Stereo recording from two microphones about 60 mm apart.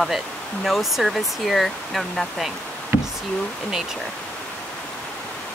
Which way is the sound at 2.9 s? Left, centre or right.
Right.